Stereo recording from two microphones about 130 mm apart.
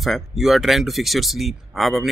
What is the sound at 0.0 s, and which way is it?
A man's voice, centre (ahead or behind).